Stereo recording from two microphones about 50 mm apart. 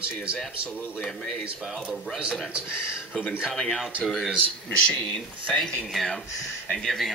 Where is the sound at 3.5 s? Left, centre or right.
Centre.